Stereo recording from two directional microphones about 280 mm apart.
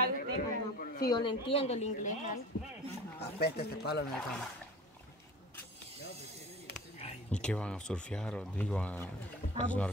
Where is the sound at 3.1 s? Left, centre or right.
Left.